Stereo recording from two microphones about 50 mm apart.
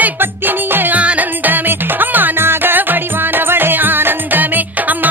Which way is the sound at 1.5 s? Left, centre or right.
Right.